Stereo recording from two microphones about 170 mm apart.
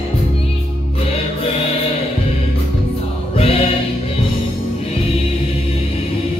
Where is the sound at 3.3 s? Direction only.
35° left (ahead or behind).